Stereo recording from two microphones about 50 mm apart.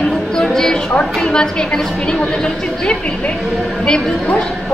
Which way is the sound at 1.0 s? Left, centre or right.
Centre.